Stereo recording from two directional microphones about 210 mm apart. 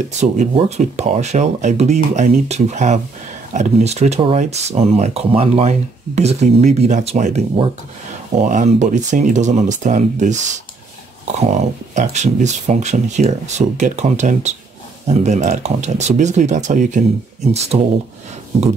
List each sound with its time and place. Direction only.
0.2 s speech: 30° right (ahead or behind)